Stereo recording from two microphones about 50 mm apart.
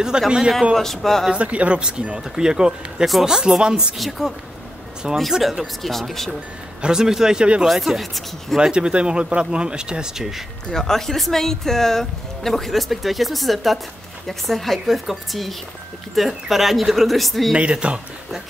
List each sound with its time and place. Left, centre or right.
0.1 s speech: centre
0.7 s speech: centre
1.3 s speech: right
5.3 s speech: centre
6.8 s speech: centre
7.6 s speech: centre
8.5 s speech: centre
10.7 s speech: centre
17.6 s speech: right